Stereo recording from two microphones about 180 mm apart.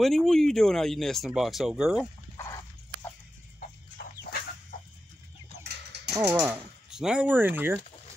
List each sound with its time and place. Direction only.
0.0 s speech: centre (ahead or behind)
2.3 s dog: 15° left (ahead or behind)
3.5 s chicken: 60° left (ahead or behind)
6.0 s speech: 15° right (ahead or behind)